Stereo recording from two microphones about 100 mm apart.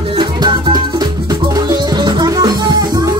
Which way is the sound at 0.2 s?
50° right (ahead or behind).